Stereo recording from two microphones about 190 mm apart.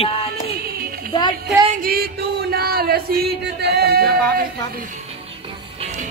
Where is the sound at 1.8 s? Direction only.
55° right (ahead or behind).